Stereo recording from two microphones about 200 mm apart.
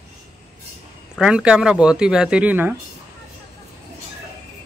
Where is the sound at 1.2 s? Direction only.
5° right (ahead or behind).